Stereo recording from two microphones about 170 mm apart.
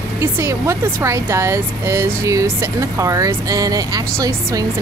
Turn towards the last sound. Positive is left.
turn(degrees=-20)  # may be behind; listen again after turning